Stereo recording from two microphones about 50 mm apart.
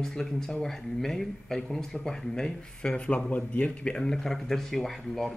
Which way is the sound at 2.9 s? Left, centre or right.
Left.